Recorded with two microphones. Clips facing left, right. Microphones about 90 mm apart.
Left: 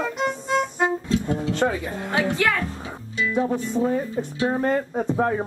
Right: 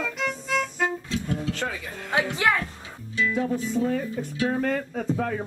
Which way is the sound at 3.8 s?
25° left (ahead or behind).